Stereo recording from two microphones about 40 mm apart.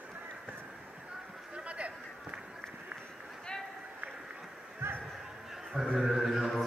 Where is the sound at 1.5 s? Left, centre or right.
Right.